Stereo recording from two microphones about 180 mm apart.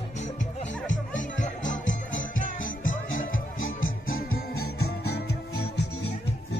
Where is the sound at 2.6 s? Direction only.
90° left.